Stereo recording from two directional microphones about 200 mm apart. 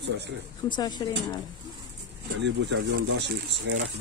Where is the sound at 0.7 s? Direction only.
20° left (ahead or behind).